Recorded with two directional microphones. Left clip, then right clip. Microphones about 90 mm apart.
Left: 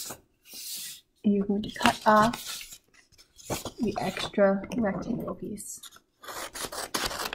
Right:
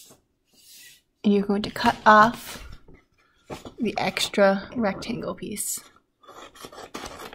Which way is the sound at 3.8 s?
15° right (ahead or behind).